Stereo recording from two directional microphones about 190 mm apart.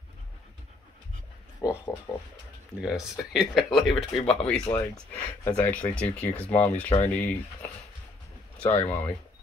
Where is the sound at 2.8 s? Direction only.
5° right (ahead or behind).